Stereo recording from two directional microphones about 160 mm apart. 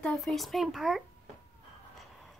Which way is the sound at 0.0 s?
5° left (ahead or behind).